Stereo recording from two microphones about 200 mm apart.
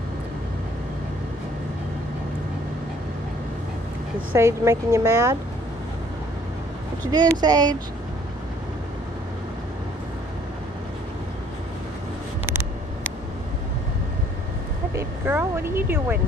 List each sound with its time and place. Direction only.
4.3 s a woman's voice: 15° right (ahead or behind)
7.1 s speech: 20° right (ahead or behind)
15.0 s speech: 10° right (ahead or behind)